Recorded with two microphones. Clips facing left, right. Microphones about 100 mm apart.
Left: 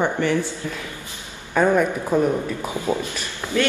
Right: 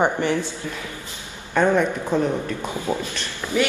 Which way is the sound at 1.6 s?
5° left (ahead or behind).